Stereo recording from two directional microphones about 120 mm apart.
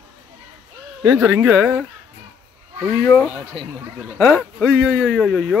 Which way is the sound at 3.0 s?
10° left (ahead or behind).